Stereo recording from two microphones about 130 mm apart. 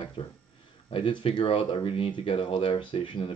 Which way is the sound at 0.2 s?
45° left (ahead or behind).